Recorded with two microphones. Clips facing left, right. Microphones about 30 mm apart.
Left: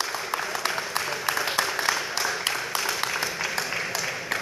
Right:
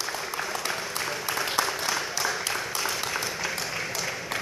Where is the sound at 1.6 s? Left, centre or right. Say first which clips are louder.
Right 2 dB; left.